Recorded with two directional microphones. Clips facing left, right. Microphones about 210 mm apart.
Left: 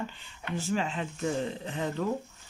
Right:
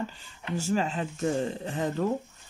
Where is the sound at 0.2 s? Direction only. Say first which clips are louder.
Right 2 dB; 40° right (ahead or behind).